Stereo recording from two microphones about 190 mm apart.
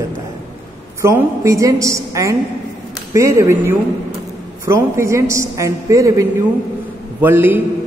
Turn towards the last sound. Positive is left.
turn(degrees=-10)  # may be behind; listen again after turning